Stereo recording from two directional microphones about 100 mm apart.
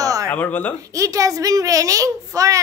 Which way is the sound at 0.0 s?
35° right (ahead or behind).